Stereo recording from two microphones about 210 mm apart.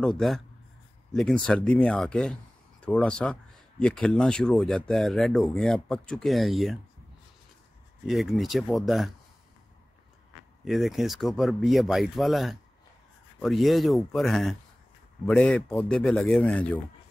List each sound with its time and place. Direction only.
0.0 s speech: centre (ahead or behind)
8.1 s speech: centre (ahead or behind)
10.6 s speech: centre (ahead or behind)